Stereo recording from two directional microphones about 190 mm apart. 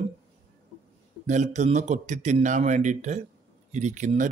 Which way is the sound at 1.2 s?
40° right (ahead or behind).